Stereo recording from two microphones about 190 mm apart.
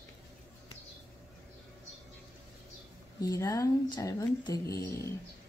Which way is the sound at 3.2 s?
20° left (ahead or behind).